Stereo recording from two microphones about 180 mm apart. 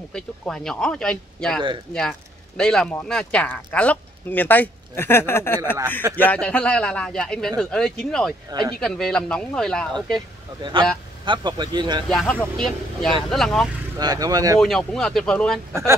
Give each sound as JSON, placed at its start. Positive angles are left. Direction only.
{"t": 0.1, "sound": "speech", "side_deg": 5}
{"t": 8.5, "sound": "speech", "side_deg": -20}
{"t": 8.8, "sound": "speech", "side_deg": 5}
{"t": 10.6, "sound": "speech", "side_deg": -25}
{"t": 12.1, "sound": "speech", "side_deg": 5}
{"t": 13.9, "sound": "speech", "side_deg": -20}
{"t": 14.6, "sound": "speech", "side_deg": 5}